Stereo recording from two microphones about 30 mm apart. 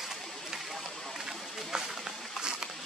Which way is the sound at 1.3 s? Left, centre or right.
Centre.